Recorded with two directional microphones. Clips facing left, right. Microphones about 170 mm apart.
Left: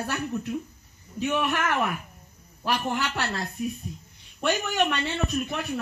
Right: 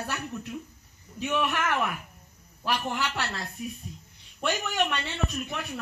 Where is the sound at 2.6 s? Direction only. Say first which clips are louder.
Left 2 dB; 45° left (ahead or behind).